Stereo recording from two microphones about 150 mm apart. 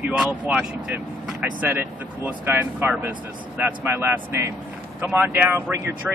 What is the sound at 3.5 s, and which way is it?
Speech, 15° right (ahead or behind).